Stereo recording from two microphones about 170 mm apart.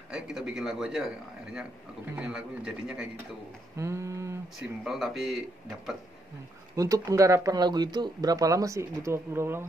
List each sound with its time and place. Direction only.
0.1 s a man's voice: centre (ahead or behind)
3.7 s a sound: 15° right (ahead or behind)
4.6 s a man's voice: centre (ahead or behind)
6.7 s speech: 20° right (ahead or behind)